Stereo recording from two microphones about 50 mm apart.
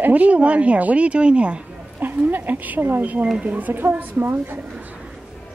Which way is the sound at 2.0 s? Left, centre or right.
Right.